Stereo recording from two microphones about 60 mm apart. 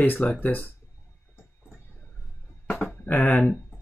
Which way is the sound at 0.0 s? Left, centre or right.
Left.